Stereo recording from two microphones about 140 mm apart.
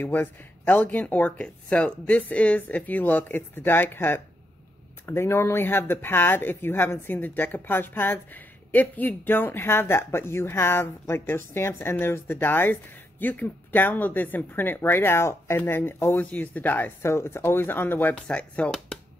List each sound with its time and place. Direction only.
0.0 s speech: 15° left (ahead or behind)